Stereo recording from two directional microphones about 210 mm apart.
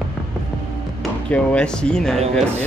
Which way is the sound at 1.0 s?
5° left (ahead or behind).